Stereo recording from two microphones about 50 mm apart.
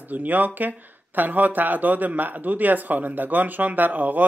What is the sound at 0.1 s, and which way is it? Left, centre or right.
Speech, right.